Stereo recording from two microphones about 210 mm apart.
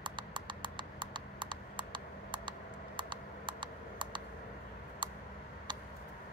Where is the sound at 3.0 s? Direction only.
20° right (ahead or behind).